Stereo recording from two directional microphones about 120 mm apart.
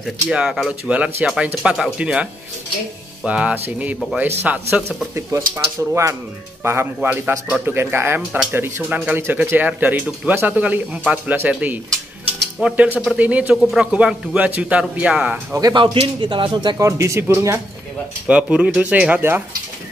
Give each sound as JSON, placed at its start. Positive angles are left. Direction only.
{"t": 0.3, "sound": "speech", "side_deg": -5}
{"t": 3.3, "sound": "speech", "side_deg": -10}
{"t": 6.6, "sound": "speech", "side_deg": -20}
{"t": 15.5, "sound": "speech", "side_deg": -35}
{"t": 16.7, "sound": "speech", "side_deg": -25}
{"t": 18.2, "sound": "speech", "side_deg": -10}